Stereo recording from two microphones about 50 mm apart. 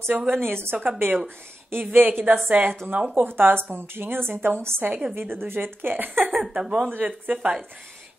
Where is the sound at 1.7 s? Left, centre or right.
Right.